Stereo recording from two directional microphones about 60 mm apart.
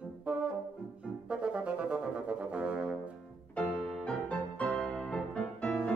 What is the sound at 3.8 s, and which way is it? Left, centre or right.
Music, centre.